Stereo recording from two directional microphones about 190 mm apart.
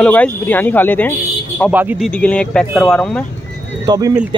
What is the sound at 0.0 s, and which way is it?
Speech, 10° left (ahead or behind).